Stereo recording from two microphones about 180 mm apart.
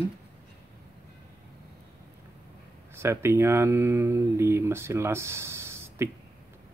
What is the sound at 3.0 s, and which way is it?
Speech, 15° right (ahead or behind).